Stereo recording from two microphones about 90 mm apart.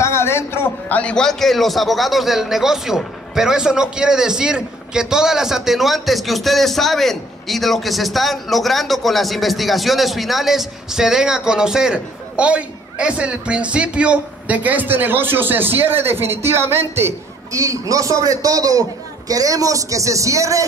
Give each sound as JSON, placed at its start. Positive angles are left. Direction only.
{"t": 0.0, "sound": "a man's voice", "side_deg": 30}